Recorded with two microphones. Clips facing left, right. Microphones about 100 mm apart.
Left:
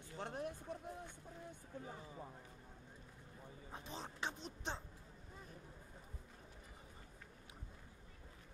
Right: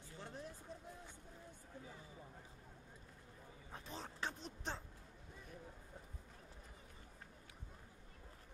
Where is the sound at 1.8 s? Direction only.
40° left (ahead or behind).